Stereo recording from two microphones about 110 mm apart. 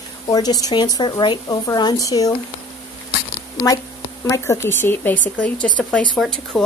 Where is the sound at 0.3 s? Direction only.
35° left (ahead or behind).